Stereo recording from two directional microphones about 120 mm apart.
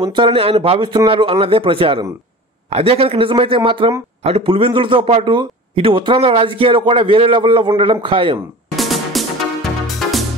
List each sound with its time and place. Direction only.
0.0 s a man's voice: 45° right (ahead or behind)
8.7 s music: centre (ahead or behind)